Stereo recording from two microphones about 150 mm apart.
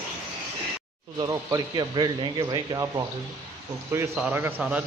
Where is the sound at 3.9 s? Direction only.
15° right (ahead or behind).